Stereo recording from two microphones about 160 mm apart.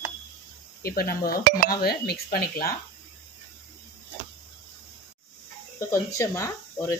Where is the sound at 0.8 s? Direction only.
70° left (ahead or behind).